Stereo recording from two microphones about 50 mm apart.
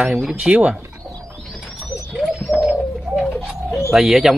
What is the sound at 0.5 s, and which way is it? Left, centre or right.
Speech, right.